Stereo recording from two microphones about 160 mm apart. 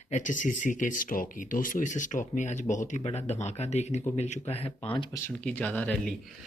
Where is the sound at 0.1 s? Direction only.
55° left (ahead or behind).